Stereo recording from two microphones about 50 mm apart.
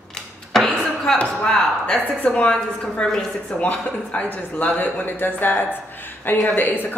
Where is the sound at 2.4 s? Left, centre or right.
Left.